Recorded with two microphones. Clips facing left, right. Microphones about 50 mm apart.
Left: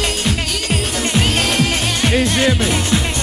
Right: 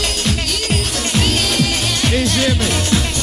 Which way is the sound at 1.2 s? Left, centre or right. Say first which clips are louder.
Left 1 dB; left.